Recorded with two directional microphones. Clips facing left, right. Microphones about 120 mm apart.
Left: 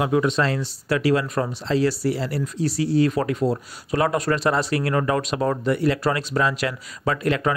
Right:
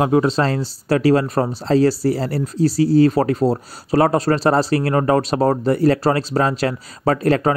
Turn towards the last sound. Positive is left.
turn(degrees=-35)  # may be behind; listen again after turning